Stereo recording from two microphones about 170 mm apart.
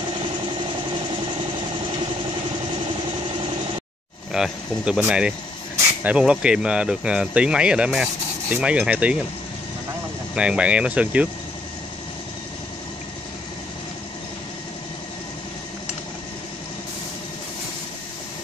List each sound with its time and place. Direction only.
4.3 s speech: 5° right (ahead or behind)
10.3 s speech: 5° right (ahead or behind)